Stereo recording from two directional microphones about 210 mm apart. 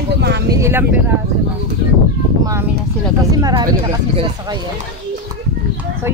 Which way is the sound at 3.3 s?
20° right (ahead or behind).